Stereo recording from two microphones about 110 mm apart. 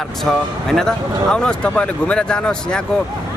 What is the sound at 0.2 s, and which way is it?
Speech, 5° left (ahead or behind).